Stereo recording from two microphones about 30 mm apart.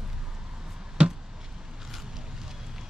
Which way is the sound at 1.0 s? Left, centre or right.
Right.